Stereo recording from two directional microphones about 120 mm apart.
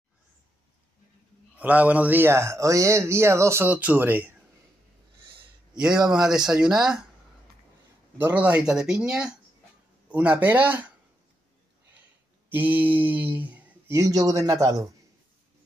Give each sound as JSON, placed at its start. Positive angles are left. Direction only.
{"t": 1.6, "sound": "speech", "side_deg": -10}
{"t": 5.2, "sound": "a sound", "side_deg": -45}
{"t": 5.7, "sound": "speech", "side_deg": -5}
{"t": 8.2, "sound": "speech", "side_deg": -15}
{"t": 12.4, "sound": "speech", "side_deg": -15}
{"t": 13.9, "sound": "speech", "side_deg": -30}